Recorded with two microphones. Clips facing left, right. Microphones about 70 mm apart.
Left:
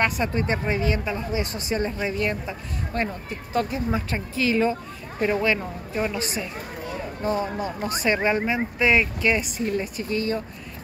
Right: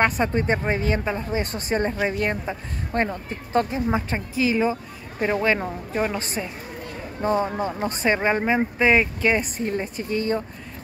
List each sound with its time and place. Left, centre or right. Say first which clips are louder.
0.0 s speech: right 3 dB; right
4.4 s speech: right 1 dB; centre
5.4 s speech: right 2 dB; right